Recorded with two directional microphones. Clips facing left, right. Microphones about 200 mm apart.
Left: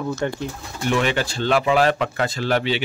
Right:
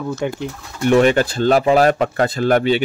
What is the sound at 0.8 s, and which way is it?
Speech, 45° right (ahead or behind).